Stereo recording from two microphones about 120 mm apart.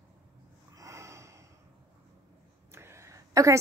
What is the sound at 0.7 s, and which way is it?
Snort, 25° right (ahead or behind).